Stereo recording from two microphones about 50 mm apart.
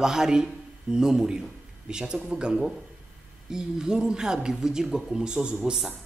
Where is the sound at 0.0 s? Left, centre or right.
Centre.